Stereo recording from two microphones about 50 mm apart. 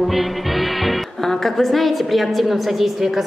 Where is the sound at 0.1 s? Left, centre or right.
Centre.